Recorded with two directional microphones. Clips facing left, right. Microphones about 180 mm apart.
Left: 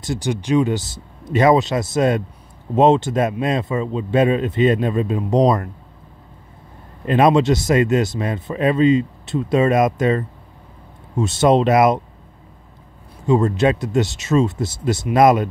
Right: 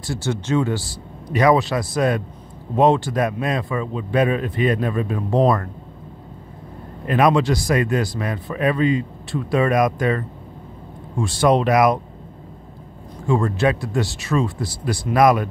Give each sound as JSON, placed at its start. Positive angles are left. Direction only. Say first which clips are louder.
{"t": 0.0, "sound": "speech", "louder": "left 2 dB", "side_deg": 15}
{"t": 7.1, "sound": "speech", "louder": "left 3 dB", "side_deg": 25}
{"t": 13.3, "sound": "speech", "louder": "left 3 dB", "side_deg": 20}